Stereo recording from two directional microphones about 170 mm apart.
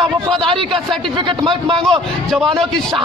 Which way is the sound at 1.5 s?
5° left (ahead or behind).